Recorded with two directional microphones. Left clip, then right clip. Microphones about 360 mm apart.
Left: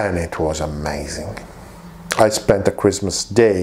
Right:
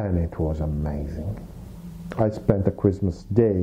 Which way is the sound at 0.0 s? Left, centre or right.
Centre.